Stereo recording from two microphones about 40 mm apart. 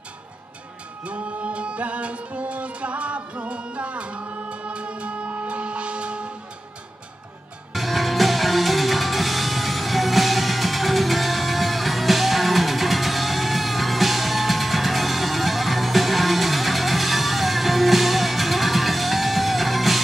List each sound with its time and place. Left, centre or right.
1.0 s music: right
7.7 s music: centre